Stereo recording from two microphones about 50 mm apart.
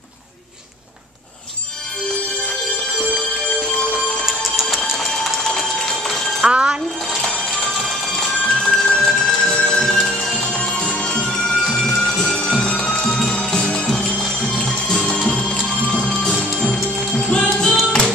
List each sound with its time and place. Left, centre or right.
4.3 s music: centre
6.5 s a sound: centre
7.1 s music: centre
10.4 s music: centre
15.1 s music: centre
15.9 s music: centre